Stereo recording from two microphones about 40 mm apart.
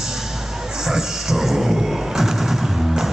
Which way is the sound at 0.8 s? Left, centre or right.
Centre.